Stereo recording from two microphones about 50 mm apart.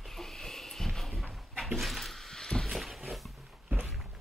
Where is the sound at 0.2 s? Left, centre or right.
Centre.